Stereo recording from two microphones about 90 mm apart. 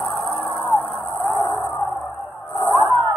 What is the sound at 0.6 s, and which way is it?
Music, 80° left.